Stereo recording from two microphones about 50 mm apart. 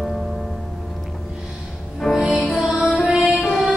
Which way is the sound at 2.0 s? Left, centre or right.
Centre.